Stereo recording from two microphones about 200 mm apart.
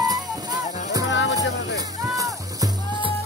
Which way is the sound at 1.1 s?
65° left (ahead or behind).